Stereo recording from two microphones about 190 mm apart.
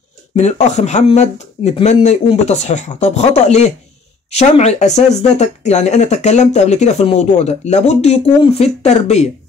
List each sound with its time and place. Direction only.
0.4 s speech: 35° left (ahead or behind)